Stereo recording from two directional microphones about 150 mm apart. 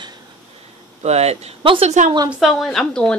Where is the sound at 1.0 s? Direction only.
45° right (ahead or behind).